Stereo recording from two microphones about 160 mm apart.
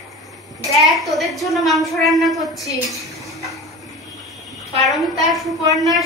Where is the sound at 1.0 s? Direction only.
Centre (ahead or behind).